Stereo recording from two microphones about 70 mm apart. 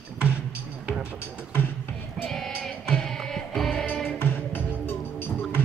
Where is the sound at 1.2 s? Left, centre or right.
Left.